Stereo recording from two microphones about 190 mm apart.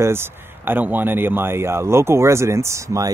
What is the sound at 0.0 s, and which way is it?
A man's voice, 10° right (ahead or behind).